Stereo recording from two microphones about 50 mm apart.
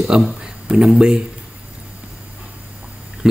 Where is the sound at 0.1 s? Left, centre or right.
Centre.